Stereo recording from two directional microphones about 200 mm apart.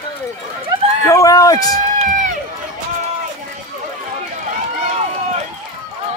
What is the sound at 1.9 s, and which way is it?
Run, 40° right (ahead or behind).